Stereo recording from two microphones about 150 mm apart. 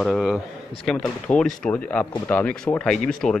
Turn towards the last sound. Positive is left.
turn(degrees=5)  # may be behind; listen again after turning